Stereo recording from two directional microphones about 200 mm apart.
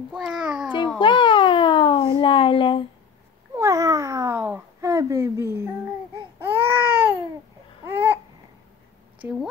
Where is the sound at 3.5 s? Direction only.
15° right (ahead or behind).